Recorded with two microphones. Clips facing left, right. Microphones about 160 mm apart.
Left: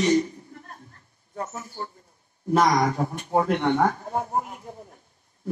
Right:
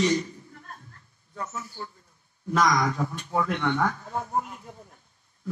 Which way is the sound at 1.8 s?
40° left (ahead or behind).